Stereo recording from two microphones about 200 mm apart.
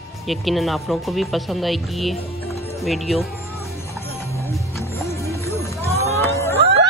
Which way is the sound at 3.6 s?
15° left (ahead or behind).